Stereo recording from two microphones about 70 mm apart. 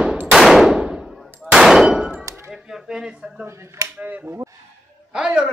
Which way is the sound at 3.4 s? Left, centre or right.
Right.